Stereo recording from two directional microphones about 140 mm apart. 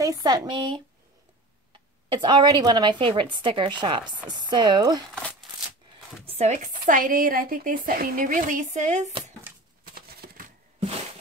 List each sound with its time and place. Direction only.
0.0 s a woman's voice: 25° right (ahead or behind)
2.0 s a woman's voice: 35° right (ahead or behind)
6.2 s speech: 50° right (ahead or behind)
9.9 s a sound: 90° right